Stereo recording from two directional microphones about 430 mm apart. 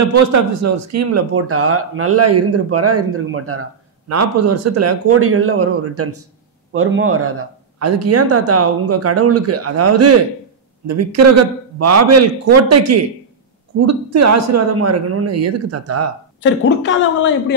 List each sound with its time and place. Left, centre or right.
0.0 s speech: right
16.4 s a woman's voice: left